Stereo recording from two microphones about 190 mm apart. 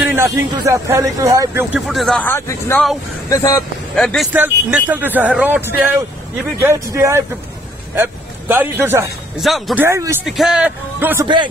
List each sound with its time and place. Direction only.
0.1 s speech: 15° right (ahead or behind)
1.9 s a man's voice: centre (ahead or behind); by 3.6 s 15° left (ahead or behind)
3.9 s a man's voice: 5° left (ahead or behind)
4.3 s a man's voice: 10° right (ahead or behind)
9.4 s a man's voice: centre (ahead or behind)
9.8 s speech: 15° right (ahead or behind)
10.2 s a man's voice: centre (ahead or behind)